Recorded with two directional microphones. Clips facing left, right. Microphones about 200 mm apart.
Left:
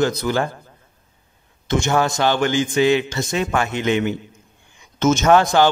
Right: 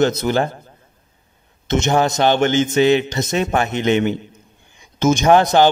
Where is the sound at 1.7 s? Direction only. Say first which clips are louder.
Right 2 dB; 20° right (ahead or behind).